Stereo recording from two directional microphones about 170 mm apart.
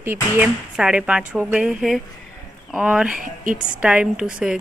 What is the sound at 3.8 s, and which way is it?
Speech, 5° right (ahead or behind).